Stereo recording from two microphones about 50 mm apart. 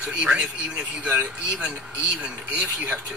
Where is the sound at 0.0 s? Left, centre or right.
Right.